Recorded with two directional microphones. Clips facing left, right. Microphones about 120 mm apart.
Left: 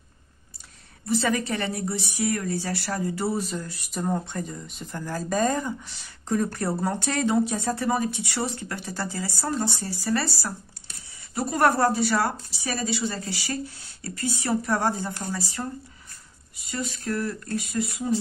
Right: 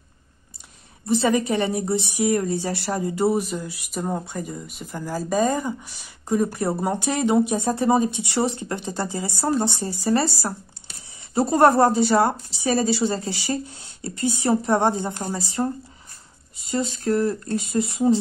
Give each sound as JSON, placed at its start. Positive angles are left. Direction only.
{"t": 1.0, "sound": "speech", "side_deg": -20}